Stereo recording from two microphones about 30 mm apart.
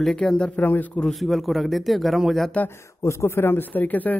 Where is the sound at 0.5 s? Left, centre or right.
Left.